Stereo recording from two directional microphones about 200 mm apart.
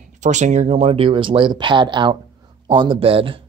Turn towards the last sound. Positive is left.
turn(degrees=-25)  # may be behind; listen again after turning